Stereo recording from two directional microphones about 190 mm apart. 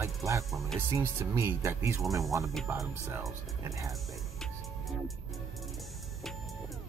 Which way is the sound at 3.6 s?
15° right (ahead or behind).